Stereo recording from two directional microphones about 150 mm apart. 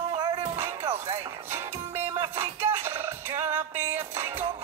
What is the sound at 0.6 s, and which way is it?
Music, 20° right (ahead or behind).